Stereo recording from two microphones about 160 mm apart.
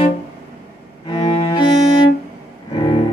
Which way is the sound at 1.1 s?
30° left (ahead or behind).